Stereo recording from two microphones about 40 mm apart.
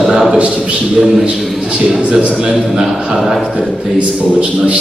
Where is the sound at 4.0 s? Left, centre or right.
Right.